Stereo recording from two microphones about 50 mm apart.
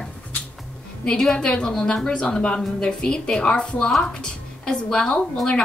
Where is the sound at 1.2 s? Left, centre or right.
Centre.